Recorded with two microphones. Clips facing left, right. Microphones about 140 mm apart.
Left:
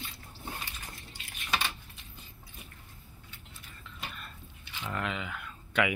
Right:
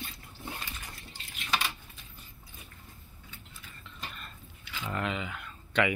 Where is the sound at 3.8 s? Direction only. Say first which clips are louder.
Left 1 dB; 5° left (ahead or behind).